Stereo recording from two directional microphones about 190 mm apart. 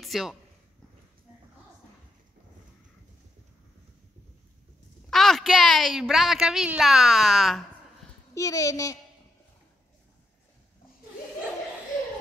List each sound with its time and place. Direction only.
0.0 s speech: centre (ahead or behind)
5.1 s a woman's voice: centre (ahead or behind)
8.4 s a child's voice: 15° left (ahead or behind)